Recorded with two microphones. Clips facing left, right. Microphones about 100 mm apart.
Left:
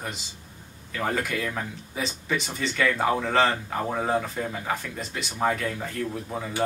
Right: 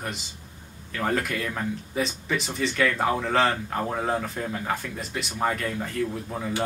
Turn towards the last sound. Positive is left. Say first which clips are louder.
# right 1 dB
turn(degrees=0)  # may be behind; listen again after turning